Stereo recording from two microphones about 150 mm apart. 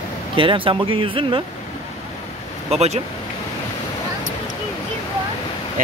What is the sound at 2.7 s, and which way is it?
Speech, 45° right (ahead or behind).